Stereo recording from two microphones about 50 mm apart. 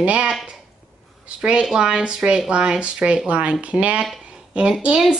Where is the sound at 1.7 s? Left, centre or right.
Centre.